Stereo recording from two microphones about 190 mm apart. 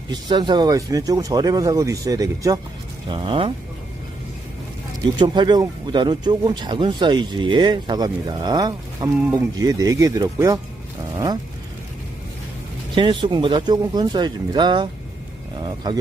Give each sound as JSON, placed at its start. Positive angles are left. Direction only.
{"t": 0.1, "sound": "speech", "side_deg": -25}
{"t": 5.2, "sound": "speech", "side_deg": -25}
{"t": 12.9, "sound": "speech", "side_deg": -25}